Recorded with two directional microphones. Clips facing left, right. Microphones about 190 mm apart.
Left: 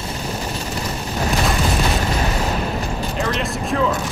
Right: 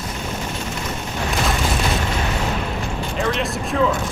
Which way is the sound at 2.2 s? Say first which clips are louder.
Left 2 dB; 40° left (ahead or behind).